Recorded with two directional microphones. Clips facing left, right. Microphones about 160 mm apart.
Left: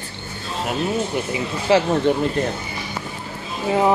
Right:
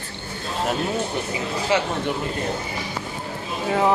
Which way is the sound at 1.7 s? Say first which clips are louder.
Left 6 dB; 30° left (ahead or behind).